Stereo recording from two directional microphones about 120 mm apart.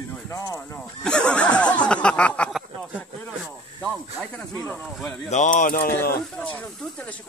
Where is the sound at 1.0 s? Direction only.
10° left (ahead or behind).